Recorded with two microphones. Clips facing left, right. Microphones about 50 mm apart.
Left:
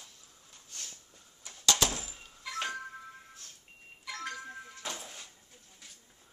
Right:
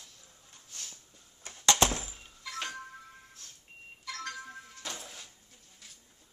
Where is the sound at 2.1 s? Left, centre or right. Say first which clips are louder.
Left 2 dB; centre.